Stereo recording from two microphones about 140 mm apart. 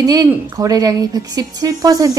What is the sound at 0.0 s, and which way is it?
A woman's voice, 25° right (ahead or behind).